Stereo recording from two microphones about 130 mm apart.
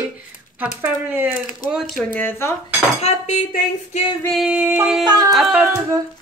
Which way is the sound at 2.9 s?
55° left (ahead or behind).